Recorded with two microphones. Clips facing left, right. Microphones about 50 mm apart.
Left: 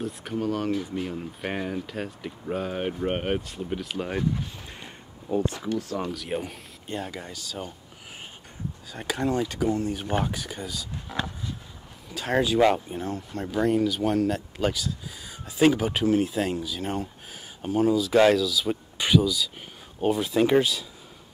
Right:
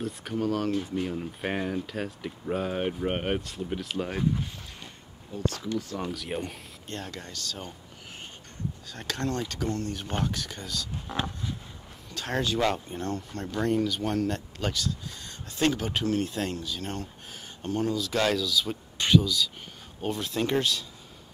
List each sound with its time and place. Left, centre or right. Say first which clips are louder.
0.0 s speech: left 1 dB; centre
5.3 s speech: left 5 dB; left
5.8 s speech: left 3 dB; centre
8.9 s speech: left 5 dB; centre
12.1 s speech: left 5 dB; centre